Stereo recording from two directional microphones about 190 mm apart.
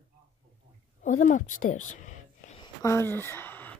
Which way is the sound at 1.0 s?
40° left (ahead or behind).